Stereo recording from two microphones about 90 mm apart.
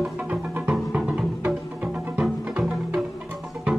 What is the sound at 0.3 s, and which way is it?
Music, 15° right (ahead or behind).